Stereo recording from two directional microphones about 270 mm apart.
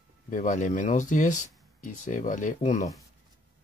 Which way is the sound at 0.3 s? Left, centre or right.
Left.